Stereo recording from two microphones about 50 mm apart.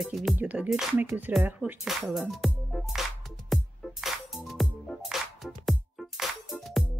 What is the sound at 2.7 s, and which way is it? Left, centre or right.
Music, centre.